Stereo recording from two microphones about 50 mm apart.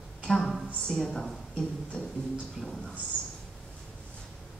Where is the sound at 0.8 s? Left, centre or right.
Centre.